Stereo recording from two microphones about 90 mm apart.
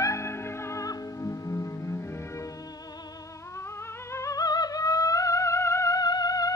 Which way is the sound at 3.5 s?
30° left (ahead or behind).